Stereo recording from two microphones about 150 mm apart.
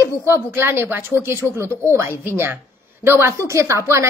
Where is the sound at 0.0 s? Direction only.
20° right (ahead or behind).